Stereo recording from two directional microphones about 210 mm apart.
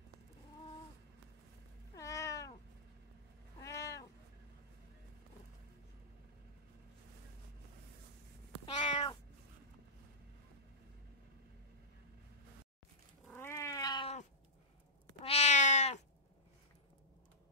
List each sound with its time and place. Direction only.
2.0 s cat: 15° left (ahead or behind)
3.6 s cat: 15° left (ahead or behind)
8.6 s cat: 25° left (ahead or behind)
13.3 s cat: 10° left (ahead or behind)
15.2 s cat: 30° left (ahead or behind)